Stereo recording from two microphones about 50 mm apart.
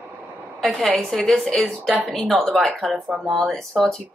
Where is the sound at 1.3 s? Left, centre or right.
Centre.